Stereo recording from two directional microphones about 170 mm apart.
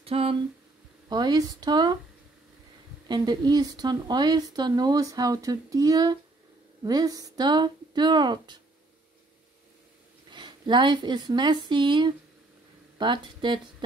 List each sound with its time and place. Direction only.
0.0 s a sound: 35° right (ahead or behind)
1.0 s speech: 25° right (ahead or behind)
3.1 s speech: 25° right (ahead or behind)
10.3 s speech: 25° right (ahead or behind)